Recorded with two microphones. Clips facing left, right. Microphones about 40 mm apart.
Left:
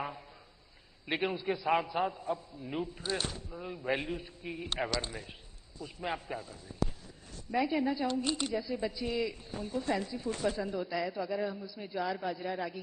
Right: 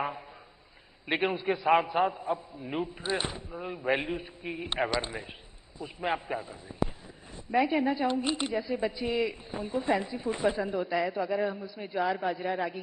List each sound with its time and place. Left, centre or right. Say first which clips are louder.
1.0 s a woman's voice: right 4 dB; right